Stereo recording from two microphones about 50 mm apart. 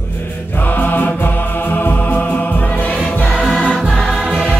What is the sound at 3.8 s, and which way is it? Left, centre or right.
Music, centre.